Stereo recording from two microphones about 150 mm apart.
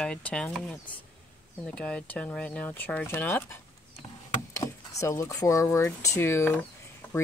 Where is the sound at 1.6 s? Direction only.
5° left (ahead or behind).